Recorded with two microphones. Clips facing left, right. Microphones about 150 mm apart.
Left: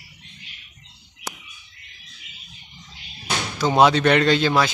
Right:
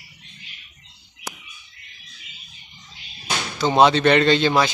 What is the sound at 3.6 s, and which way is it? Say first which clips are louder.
Speech: right 1 dB; 5° left (ahead or behind).